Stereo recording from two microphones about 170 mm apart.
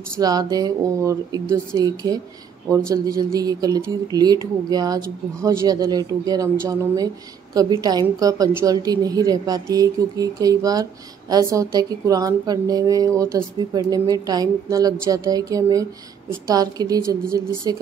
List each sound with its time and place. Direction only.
0.2 s a woman's voice: 20° right (ahead or behind)